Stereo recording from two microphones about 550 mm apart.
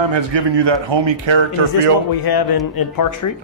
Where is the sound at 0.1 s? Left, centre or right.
Right.